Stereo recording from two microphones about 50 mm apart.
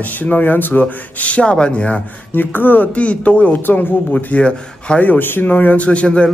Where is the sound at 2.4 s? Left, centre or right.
Left.